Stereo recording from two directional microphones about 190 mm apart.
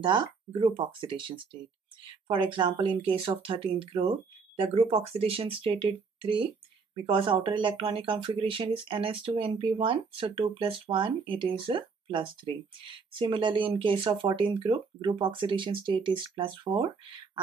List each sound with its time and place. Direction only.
0.0 s speech: 25° right (ahead or behind)